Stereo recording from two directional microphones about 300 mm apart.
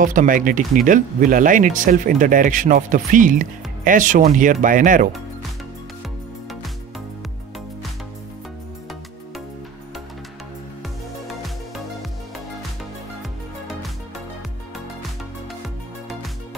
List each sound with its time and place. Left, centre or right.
0.0 s speech: right
11.4 s music: centre
15.6 s music: centre